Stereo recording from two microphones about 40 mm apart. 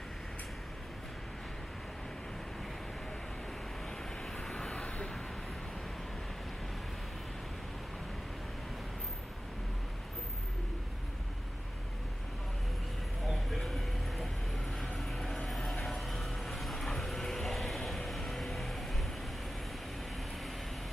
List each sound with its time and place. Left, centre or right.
4.2 s vehicle: centre
13.3 s vehicle: centre